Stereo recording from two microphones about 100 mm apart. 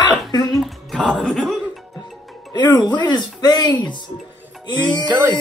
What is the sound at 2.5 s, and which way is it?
Speech, 45° left (ahead or behind).